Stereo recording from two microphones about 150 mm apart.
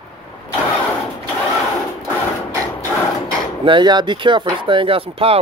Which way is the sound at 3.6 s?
30° right (ahead or behind).